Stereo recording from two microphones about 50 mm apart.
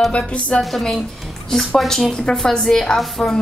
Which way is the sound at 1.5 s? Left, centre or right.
Centre.